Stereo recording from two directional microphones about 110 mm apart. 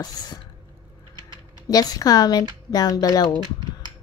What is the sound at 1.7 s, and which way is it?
Speech, 35° left (ahead or behind).